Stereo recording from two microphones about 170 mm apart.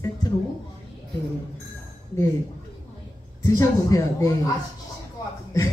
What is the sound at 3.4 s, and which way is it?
Speech, 20° left (ahead or behind).